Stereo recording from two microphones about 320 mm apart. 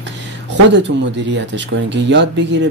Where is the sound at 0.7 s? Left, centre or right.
Right.